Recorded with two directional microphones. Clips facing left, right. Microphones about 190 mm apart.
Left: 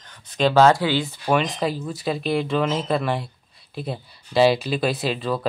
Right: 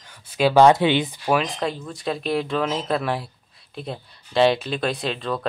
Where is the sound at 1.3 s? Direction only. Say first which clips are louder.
Left 1 dB; centre (ahead or behind).